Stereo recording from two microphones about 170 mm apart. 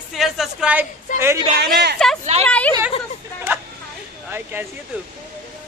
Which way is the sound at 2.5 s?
5° left (ahead or behind).